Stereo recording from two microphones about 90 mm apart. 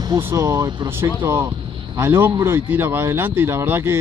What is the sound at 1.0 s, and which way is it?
Speech, 25° right (ahead or behind).